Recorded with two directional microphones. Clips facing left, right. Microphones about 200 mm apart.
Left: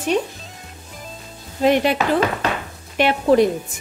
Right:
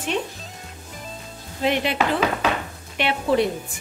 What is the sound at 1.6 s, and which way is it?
Speech, 45° left (ahead or behind).